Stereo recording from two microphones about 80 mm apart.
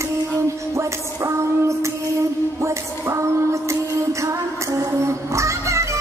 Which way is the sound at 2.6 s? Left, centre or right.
Right.